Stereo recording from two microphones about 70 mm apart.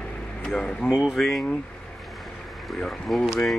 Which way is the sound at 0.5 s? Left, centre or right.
Centre.